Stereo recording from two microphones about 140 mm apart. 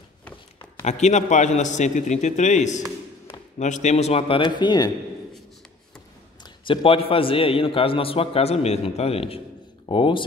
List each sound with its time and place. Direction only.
0.8 s a man's voice: 55° left (ahead or behind); by 4.9 s 30° left (ahead or behind)
6.4 s a man's voice: 35° left (ahead or behind)